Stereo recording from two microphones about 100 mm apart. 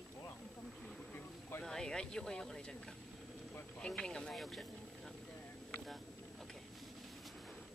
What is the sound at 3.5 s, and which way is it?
Vehicle, 15° left (ahead or behind).